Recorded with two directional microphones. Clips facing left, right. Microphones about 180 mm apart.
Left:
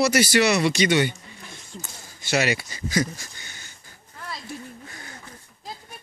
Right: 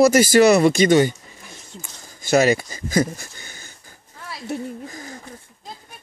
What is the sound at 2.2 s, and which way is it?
Speech, 45° right (ahead or behind).